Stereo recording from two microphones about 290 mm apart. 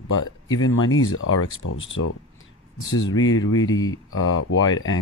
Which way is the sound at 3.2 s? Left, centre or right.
Left.